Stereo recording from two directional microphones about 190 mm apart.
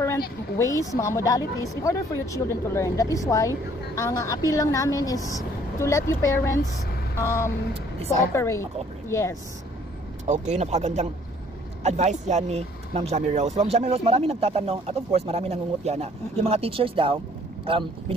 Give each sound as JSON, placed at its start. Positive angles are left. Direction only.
{"t": 0.6, "sound": "a woman's voice", "side_deg": 15}
{"t": 10.2, "sound": "speech", "side_deg": -40}